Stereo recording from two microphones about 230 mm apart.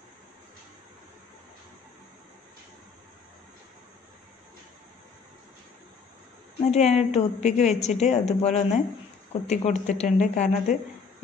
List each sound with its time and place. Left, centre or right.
6.6 s a woman's voice: left